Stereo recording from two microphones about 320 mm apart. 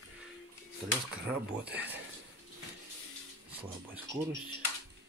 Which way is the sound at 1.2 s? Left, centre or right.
Right.